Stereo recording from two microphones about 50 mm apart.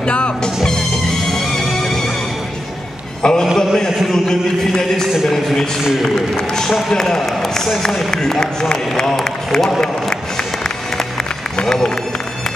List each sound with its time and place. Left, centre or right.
0.0 s speech: left
0.7 s music: centre
3.2 s a man's voice: centre
5.1 s a sound: centre
6.0 s a man's voice: centre